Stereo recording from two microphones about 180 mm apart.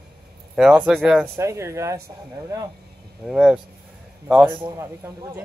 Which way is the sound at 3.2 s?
5° right (ahead or behind).